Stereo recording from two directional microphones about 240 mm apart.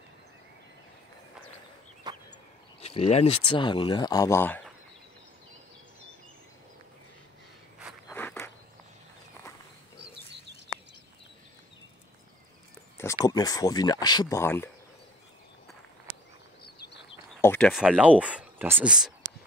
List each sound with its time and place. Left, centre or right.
2.1 s a sound: centre
2.8 s speech: left; by 4.7 s centre
8.1 s walk: centre
13.2 s speech: centre
17.4 s speech: centre